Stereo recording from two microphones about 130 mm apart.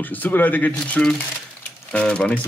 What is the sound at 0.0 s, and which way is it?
Speech, 15° left (ahead or behind).